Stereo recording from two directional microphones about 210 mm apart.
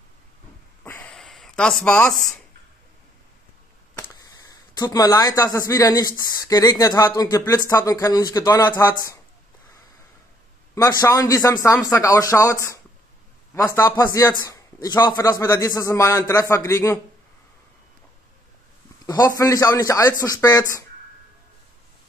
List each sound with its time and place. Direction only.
0.8 s a sound: 10° left (ahead or behind)
4.7 s speech: 20° left (ahead or behind)
10.7 s speech: 15° left (ahead or behind)
13.6 s speech: 15° left (ahead or behind)
19.0 s speech: 15° left (ahead or behind)